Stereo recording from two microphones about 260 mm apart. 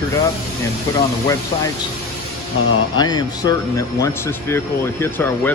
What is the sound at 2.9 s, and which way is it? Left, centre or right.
Speech, centre.